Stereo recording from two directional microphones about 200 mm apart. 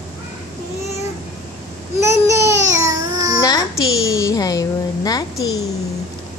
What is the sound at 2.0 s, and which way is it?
Babbling, 15° right (ahead or behind).